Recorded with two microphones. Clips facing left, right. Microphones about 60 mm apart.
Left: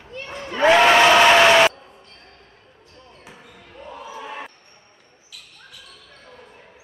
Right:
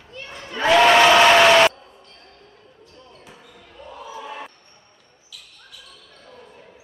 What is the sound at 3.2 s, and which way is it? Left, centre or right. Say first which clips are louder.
Basketball bounce: left 1 dB; centre.